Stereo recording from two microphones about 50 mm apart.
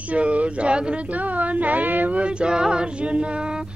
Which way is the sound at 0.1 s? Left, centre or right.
Right.